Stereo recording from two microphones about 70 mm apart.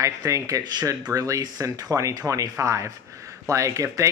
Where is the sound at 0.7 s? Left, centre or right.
Right.